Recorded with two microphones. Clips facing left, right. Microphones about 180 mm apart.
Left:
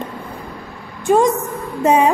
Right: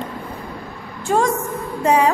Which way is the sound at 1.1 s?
20° left (ahead or behind).